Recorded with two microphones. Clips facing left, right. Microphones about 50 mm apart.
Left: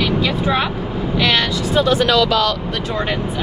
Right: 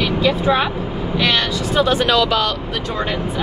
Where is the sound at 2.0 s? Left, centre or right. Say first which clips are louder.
Left 1 dB; right.